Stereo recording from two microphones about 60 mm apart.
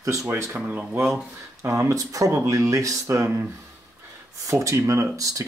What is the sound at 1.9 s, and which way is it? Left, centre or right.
Speech, right.